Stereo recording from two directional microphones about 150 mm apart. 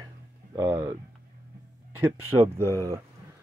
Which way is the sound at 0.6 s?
10° right (ahead or behind).